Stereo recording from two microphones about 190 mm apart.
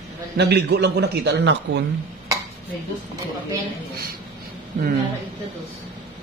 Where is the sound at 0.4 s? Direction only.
60° right (ahead or behind).